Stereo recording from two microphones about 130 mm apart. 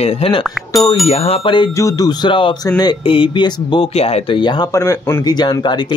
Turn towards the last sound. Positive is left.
turn(degrees=35)  # may be behind; listen again after turning